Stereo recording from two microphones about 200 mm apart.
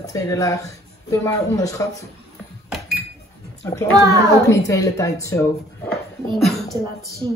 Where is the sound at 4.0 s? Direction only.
15° right (ahead or behind).